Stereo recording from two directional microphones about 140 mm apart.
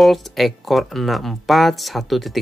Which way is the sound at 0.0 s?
Centre (ahead or behind).